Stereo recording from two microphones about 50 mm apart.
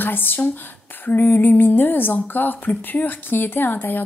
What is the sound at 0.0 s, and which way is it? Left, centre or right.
A woman's voice, left.